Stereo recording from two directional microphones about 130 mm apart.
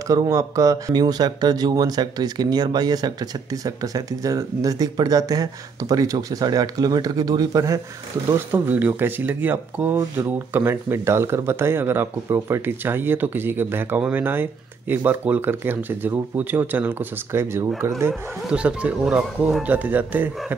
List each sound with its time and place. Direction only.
0.1 s speech: 25° right (ahead or behind)
18.5 s speech: 10° right (ahead or behind)